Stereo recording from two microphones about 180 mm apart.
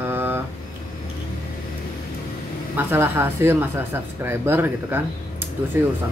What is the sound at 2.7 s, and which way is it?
Speech, 10° right (ahead or behind).